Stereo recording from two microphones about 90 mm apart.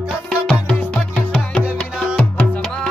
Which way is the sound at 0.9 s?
15° left (ahead or behind).